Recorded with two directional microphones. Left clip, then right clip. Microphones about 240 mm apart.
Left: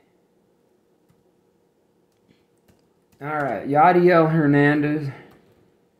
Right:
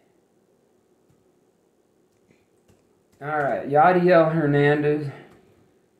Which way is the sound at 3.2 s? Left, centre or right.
Left.